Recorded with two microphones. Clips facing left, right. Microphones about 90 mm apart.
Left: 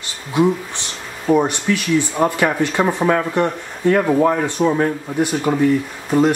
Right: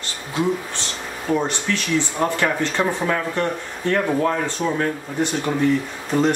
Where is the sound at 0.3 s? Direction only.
15° left (ahead or behind).